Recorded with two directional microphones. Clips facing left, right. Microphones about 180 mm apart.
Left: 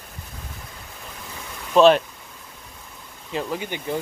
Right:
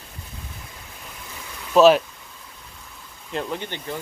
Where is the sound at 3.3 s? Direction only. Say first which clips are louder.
Left 1 dB; 5° left (ahead or behind).